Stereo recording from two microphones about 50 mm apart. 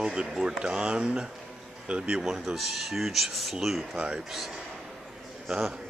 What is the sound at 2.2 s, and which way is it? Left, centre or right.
Speech, centre.